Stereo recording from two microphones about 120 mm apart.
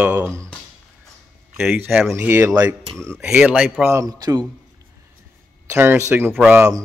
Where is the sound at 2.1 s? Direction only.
20° right (ahead or behind).